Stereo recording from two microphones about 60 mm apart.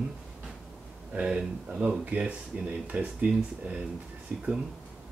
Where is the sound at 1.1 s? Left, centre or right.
Centre.